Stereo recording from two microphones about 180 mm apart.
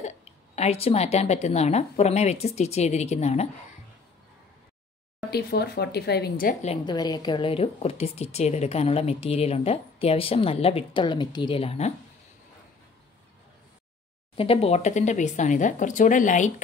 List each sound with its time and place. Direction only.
0.0 s a woman's voice: 35° left (ahead or behind)
5.3 s speech: 65° left (ahead or behind)
6.6 s a woman's voice: 30° left (ahead or behind)
14.3 s speech: 30° left (ahead or behind)